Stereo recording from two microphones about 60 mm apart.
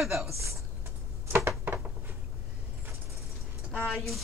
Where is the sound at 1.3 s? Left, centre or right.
Right.